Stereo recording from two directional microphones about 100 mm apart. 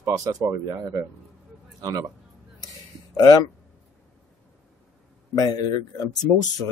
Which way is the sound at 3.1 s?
40° left (ahead or behind).